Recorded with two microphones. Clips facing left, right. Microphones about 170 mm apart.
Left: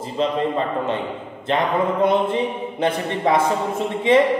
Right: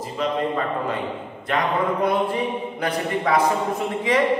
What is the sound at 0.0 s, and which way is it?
A man's voice, 25° left (ahead or behind).